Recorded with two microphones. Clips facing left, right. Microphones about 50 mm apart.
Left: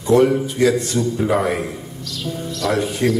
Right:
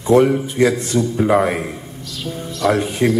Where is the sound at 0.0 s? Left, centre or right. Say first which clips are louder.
Right 1 dB; right.